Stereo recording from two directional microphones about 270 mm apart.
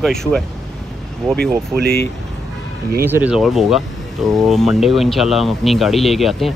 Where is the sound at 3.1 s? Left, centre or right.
Centre.